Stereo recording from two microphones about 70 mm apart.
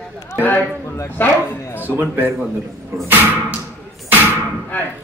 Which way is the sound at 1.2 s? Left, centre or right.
Left.